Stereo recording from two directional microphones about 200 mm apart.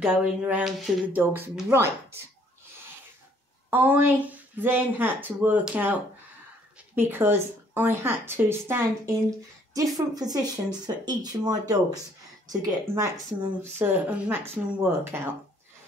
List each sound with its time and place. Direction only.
0.0 s speech: 5° right (ahead or behind)
3.7 s speech: 10° right (ahead or behind)
7.0 s speech: 10° right (ahead or behind)